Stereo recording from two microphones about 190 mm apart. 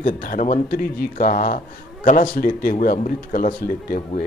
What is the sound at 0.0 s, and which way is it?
Speech, 45° left (ahead or behind).